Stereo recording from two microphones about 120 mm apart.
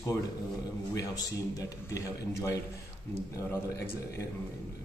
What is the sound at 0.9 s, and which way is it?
A man's voice, 30° left (ahead or behind).